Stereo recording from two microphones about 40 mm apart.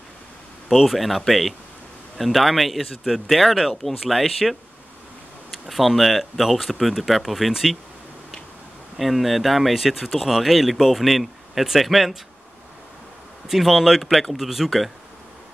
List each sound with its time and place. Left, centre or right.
0.7 s speech: centre
8.9 s speech: centre
13.5 s speech: centre